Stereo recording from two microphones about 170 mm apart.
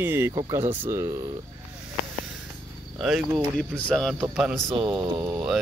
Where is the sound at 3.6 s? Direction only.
5° left (ahead or behind).